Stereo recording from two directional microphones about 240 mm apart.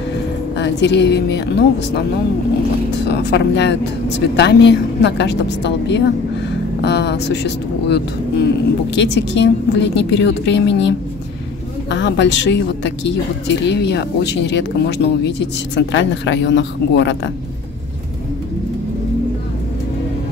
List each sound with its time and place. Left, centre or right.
0.6 s speech: left
3.1 s speech: left